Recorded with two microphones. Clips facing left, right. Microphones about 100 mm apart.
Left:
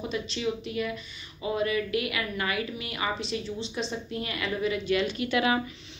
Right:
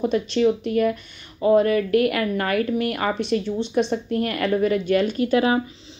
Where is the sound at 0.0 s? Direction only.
50° right (ahead or behind).